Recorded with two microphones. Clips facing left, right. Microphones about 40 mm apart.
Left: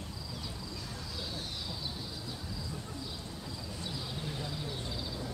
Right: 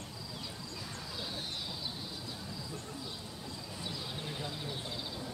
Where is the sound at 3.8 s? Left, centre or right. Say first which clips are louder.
Left 1 dB; centre.